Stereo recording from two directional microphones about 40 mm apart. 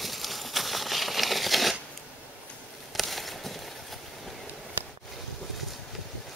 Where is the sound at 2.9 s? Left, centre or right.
Centre.